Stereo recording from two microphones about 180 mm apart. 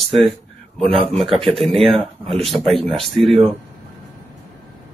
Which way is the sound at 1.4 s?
Centre (ahead or behind).